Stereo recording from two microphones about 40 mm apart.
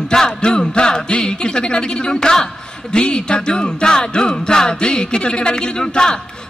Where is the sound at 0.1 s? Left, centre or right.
Centre.